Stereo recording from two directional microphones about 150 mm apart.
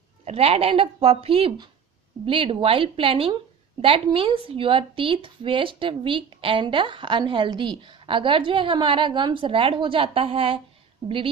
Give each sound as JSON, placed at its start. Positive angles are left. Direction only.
{"t": 0.2, "sound": "a woman's voice", "side_deg": -45}